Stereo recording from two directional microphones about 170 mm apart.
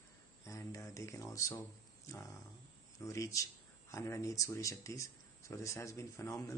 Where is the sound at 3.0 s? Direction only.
20° left (ahead or behind).